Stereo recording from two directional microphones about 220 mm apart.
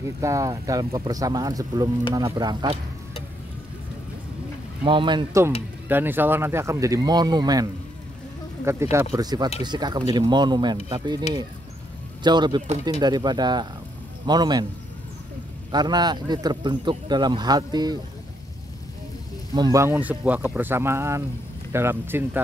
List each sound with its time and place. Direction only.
0.2 s speech: 15° right (ahead or behind)
4.8 s speech: 20° right (ahead or behind)
8.9 s speech: 15° right (ahead or behind)
15.7 s speech: 20° right (ahead or behind)
19.5 s speech: 15° right (ahead or behind)